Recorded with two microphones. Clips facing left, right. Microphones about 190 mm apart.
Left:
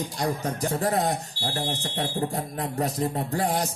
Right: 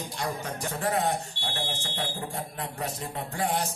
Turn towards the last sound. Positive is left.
turn(degrees=40)  # may be behind; listen again after turning